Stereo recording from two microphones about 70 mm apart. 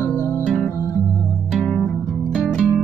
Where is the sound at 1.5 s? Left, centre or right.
Centre.